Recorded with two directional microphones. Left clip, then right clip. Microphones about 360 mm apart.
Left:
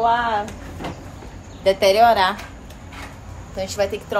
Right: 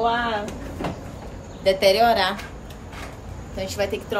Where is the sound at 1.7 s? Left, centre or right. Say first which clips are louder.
Left 3 dB; centre.